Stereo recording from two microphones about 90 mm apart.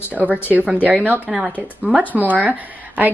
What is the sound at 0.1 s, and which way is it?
Speech, 15° right (ahead or behind).